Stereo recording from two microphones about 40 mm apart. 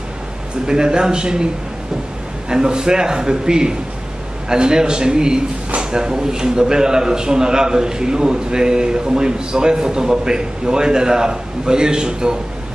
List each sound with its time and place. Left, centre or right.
0.7 s a man's voice: centre
2.5 s a man's voice: centre